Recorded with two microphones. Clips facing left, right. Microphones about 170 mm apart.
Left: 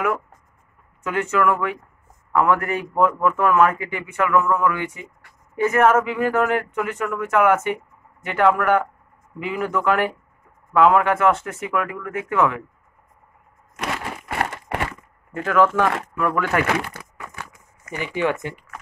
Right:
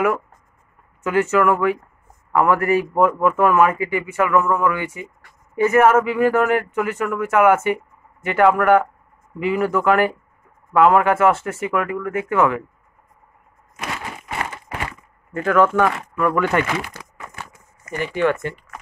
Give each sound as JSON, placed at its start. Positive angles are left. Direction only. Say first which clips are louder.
{"t": 1.0, "sound": "speech", "louder": "right 4 dB", "side_deg": -5}
{"t": 14.4, "sound": "crumpling", "louder": "left 6 dB", "side_deg": 70}
{"t": 15.3, "sound": "speech", "louder": "right 2 dB", "side_deg": 0}
{"t": 16.6, "sound": "speech", "louder": "left 2 dB", "side_deg": 60}
{"t": 17.9, "sound": "speech", "louder": "right 3 dB", "side_deg": 10}